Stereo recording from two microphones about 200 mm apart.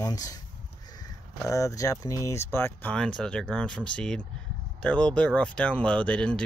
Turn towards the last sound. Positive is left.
turn(degrees=5)  # may be behind; listen again after turning